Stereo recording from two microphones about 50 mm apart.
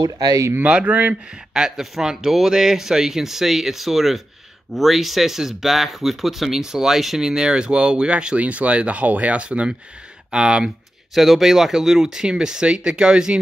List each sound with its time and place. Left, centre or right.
0.7 s speech: right
1.5 s speech: centre
11.1 s speech: centre